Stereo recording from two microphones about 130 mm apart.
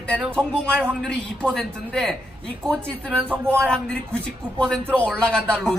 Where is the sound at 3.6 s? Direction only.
5° left (ahead or behind).